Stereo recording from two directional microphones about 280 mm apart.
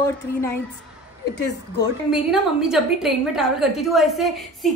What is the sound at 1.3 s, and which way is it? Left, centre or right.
Speech, left.